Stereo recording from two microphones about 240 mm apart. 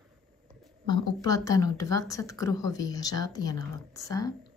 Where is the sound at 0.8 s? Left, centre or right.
Centre.